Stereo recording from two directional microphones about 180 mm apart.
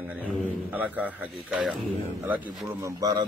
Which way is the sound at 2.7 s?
15° right (ahead or behind).